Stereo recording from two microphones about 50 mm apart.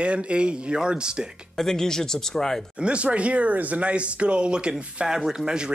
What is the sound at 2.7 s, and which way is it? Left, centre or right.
Speech, right.